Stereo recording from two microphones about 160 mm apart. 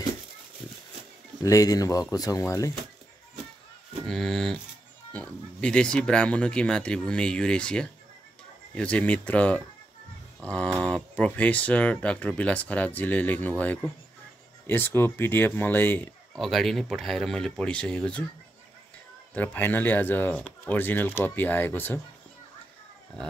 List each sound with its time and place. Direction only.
1.4 s speech: 20° left (ahead or behind)
4.1 s speech: 5° left (ahead or behind)
10.4 s a sound: 5° left (ahead or behind)
10.8 s speech: 10° left (ahead or behind)
16.3 s speech: centre (ahead or behind)
19.3 s speech: 10° left (ahead or behind)